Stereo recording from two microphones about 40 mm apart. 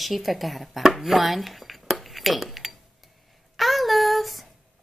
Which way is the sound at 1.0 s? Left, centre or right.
Centre.